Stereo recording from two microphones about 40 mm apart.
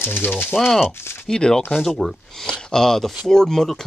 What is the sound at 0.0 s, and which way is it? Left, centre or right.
Speech, left.